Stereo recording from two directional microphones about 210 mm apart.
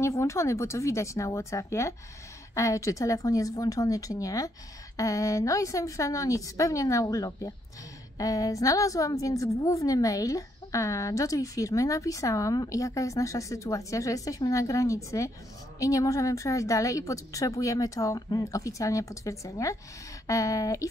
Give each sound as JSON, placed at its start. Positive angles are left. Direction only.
{"t": 0.0, "sound": "a woman's voice", "side_deg": 15}